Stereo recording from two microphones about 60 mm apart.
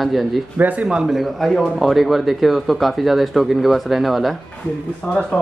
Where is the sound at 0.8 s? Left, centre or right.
Centre.